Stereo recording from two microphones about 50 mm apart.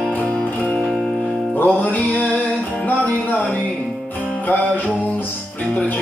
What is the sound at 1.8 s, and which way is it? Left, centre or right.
Music, left.